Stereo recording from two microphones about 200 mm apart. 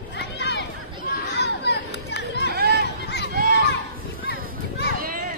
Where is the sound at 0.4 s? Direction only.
60° left (ahead or behind).